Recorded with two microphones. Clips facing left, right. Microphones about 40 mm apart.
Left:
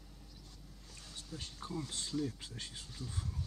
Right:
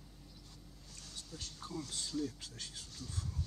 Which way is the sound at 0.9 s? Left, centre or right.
Centre.